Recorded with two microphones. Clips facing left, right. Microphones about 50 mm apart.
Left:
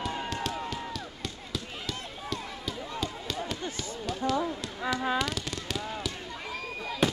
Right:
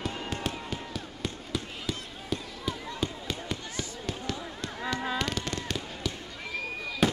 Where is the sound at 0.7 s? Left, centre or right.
Centre.